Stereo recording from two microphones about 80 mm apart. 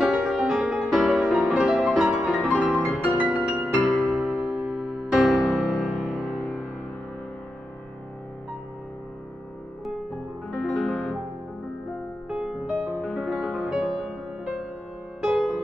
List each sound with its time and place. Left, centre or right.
0.0 s music: centre
2.4 s music: centre
6.2 s music: centre
10.5 s music: centre
12.3 s music: centre